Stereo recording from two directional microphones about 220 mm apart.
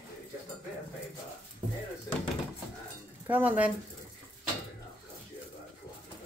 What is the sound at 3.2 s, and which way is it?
Speech, 10° right (ahead or behind).